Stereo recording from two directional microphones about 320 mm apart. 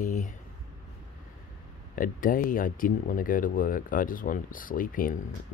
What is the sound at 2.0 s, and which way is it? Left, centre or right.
Speech, left.